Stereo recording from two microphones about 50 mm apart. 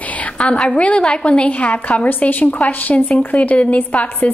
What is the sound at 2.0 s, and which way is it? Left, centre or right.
A woman's voice, left.